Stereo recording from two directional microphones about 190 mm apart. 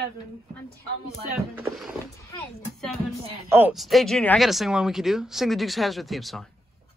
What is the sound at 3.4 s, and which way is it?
Speech, 10° right (ahead or behind).